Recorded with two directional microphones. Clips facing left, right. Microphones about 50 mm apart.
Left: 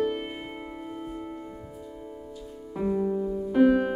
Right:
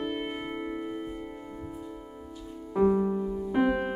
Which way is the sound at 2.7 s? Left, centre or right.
Centre.